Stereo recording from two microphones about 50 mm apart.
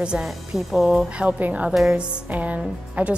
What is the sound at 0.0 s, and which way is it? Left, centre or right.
Speech, centre.